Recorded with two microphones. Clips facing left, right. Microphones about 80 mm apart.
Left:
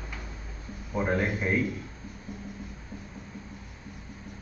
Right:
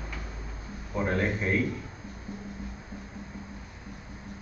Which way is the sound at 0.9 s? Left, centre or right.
Centre.